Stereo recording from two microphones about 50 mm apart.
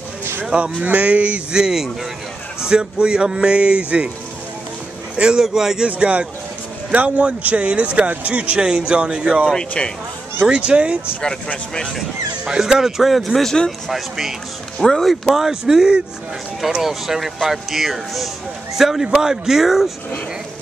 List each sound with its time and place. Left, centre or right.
0.2 s cattle: right
0.8 s speech: right
5.4 s speech: centre
5.9 s speech: right
9.5 s speech: centre
10.4 s speech: right
11.1 s speech: left
12.4 s speech: centre
14.8 s speech: centre
15.3 s speech: centre